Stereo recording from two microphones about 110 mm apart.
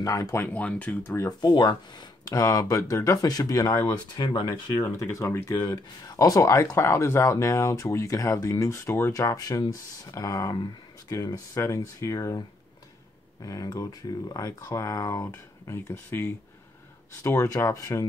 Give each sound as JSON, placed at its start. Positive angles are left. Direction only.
{"t": 0.0, "sound": "speech", "side_deg": 30}
{"t": 0.5, "sound": "speech", "side_deg": 10}
{"t": 1.4, "sound": "speech", "side_deg": 40}
{"t": 5.5, "sound": "speech", "side_deg": 40}